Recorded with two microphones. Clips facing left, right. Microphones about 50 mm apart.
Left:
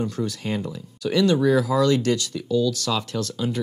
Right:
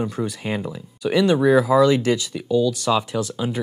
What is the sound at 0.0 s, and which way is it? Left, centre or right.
Speech, centre.